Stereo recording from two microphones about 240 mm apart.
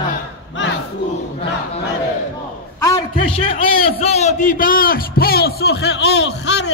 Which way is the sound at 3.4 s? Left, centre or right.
Left.